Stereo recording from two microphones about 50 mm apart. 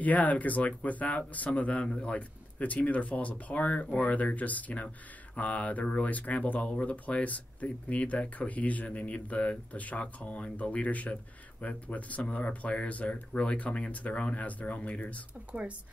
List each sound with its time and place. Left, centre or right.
0.0 s speech: left
15.5 s speech: right